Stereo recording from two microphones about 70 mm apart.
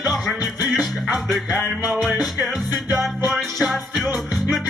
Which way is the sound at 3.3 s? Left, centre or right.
Centre.